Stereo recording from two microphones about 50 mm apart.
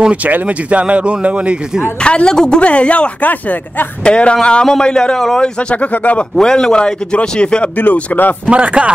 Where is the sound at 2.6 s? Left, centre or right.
Left.